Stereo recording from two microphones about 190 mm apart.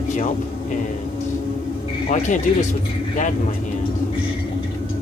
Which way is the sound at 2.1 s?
40° left (ahead or behind).